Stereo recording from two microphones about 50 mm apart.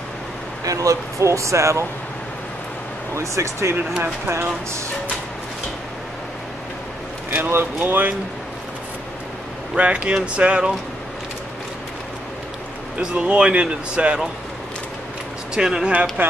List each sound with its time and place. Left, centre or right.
0.7 s speech: right
3.2 s speech: right
7.3 s speech: right
9.8 s a man's voice: right
13.0 s a man's voice: right
15.5 s speech: centre
15.9 s a man's voice: right